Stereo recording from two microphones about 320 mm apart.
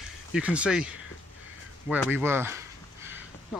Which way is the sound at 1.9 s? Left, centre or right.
Centre.